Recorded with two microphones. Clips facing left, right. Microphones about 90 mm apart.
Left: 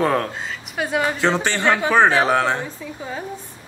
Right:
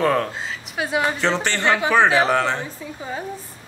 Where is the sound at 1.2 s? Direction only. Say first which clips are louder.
Left 2 dB; 15° left (ahead or behind).